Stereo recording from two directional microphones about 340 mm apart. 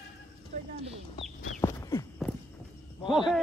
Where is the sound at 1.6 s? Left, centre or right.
Centre.